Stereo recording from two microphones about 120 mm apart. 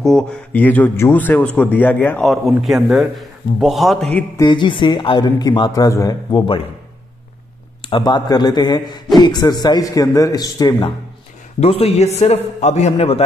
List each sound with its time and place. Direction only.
0.0 s speech: 5° left (ahead or behind)
2.2 s a man's voice: centre (ahead or behind)
4.4 s a man's voice: 40° left (ahead or behind)
7.9 s a man's voice: 35° left (ahead or behind)
11.6 s a man's voice: 60° left (ahead or behind)